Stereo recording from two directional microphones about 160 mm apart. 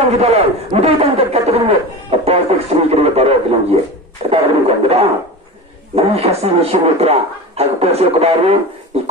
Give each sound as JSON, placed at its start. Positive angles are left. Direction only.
{"t": 0.1, "sound": "a man's voice", "side_deg": -40}